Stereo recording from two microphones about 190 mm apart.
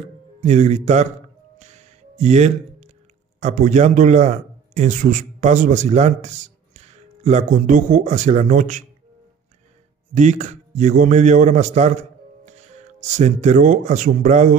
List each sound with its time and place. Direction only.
0.4 s a man's voice: 35° right (ahead or behind)
1.6 s music: 40° right (ahead or behind)
3.3 s a man's voice: 40° right (ahead or behind)
10.1 s a man's voice: 40° right (ahead or behind)